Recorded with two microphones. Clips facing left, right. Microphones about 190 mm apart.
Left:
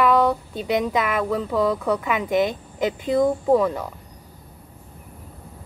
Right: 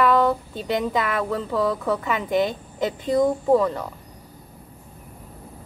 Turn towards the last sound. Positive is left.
turn(degrees=5)  # may be behind; listen again after turning